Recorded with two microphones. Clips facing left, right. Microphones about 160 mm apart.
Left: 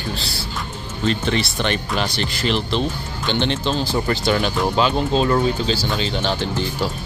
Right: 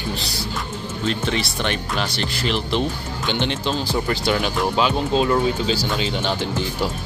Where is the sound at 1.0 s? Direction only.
5° right (ahead or behind).